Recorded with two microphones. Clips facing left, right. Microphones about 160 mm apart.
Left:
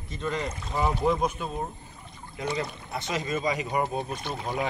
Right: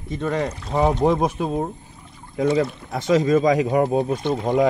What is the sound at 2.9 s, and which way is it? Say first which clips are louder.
Speech: right 13 dB; 90° right.